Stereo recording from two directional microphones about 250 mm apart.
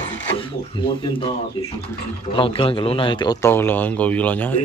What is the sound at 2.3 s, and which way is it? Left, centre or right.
A man's voice, left.